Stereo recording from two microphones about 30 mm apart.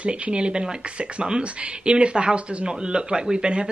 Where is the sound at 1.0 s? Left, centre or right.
Right.